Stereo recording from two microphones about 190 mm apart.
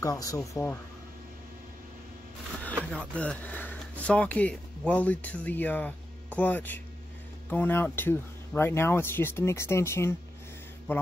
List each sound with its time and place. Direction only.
0.0 s speech: 15° left (ahead or behind)
2.6 s speech: 5° left (ahead or behind)